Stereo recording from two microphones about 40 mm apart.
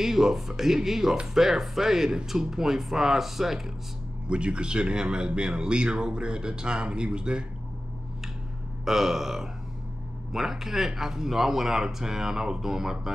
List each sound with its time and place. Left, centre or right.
0.0 s speech: centre
4.3 s speech: right
8.8 s speech: centre